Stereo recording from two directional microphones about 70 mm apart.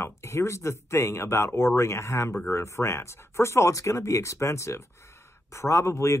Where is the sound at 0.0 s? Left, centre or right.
Left.